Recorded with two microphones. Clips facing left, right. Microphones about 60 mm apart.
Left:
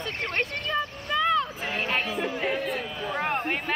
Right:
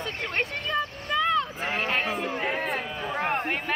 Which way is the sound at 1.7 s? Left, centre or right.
Centre.